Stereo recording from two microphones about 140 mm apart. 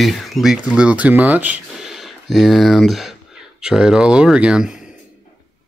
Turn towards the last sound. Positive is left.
turn(degrees=-5)  # may be behind; listen again after turning